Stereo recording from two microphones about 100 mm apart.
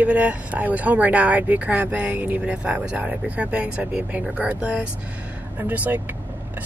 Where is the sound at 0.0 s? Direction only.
15° right (ahead or behind).